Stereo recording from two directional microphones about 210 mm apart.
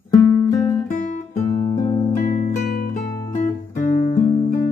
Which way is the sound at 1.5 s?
20° left (ahead or behind).